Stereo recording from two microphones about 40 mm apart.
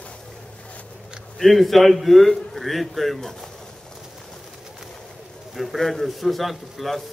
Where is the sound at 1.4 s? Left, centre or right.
Centre.